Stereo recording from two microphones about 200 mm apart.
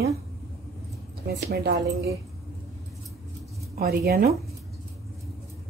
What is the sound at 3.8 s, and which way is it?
Speech, 50° right (ahead or behind).